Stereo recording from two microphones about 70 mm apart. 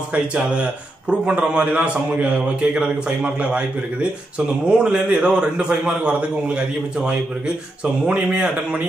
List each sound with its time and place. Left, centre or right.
0.1 s a man's voice: centre